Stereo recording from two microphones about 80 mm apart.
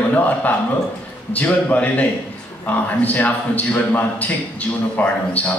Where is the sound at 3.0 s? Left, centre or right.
Centre.